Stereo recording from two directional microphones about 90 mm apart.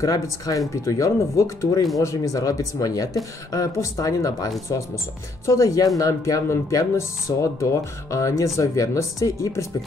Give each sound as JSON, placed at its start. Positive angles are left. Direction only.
{"t": 0.0, "sound": "speech", "side_deg": 40}